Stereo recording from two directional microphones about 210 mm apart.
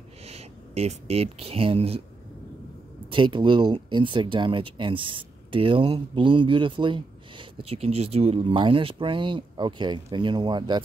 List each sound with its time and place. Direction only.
0.2 s speech: 30° right (ahead or behind)
3.1 s speech: 20° right (ahead or behind)